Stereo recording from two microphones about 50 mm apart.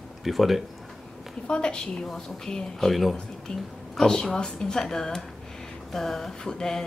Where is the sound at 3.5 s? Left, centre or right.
Centre.